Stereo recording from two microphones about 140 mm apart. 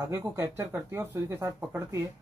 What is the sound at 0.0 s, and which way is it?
Speech, 15° right (ahead or behind).